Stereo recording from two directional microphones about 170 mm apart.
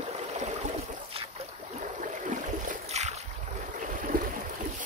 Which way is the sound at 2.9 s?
40° right (ahead or behind).